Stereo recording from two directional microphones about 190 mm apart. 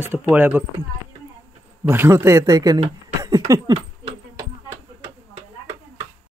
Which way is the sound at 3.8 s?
25° right (ahead or behind).